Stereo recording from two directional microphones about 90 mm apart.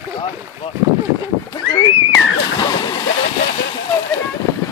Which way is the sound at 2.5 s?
50° left (ahead or behind).